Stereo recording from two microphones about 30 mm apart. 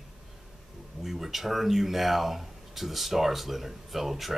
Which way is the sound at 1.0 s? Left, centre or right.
Centre.